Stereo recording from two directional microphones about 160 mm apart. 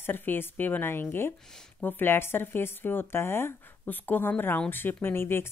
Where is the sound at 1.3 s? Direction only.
5° left (ahead or behind).